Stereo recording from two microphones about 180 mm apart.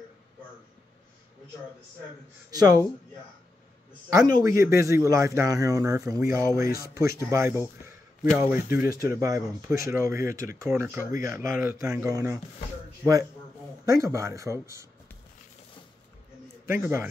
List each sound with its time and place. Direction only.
2.5 s speech: 20° right (ahead or behind)
4.3 s a man's voice: 20° right (ahead or behind)
13.9 s speech: 15° right (ahead or behind)
16.6 s speech: 15° right (ahead or behind)